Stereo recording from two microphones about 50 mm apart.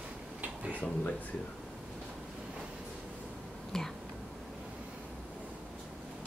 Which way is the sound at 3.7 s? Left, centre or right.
Centre.